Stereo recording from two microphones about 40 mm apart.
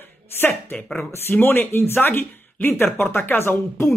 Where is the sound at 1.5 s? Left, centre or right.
Left.